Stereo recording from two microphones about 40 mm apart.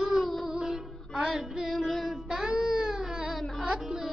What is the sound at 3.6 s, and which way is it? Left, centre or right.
Music, right.